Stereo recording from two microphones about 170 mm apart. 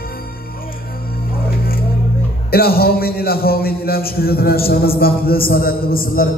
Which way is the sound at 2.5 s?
65° left (ahead or behind).